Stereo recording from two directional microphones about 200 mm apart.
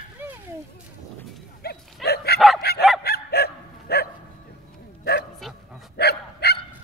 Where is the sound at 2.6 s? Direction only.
50° left (ahead or behind).